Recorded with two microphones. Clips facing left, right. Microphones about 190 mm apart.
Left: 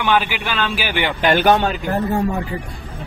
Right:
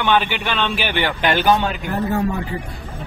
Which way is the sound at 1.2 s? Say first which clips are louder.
Left 5 dB; 50° left (ahead or behind).